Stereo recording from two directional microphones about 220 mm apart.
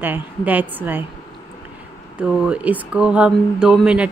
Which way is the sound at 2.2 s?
5° right (ahead or behind).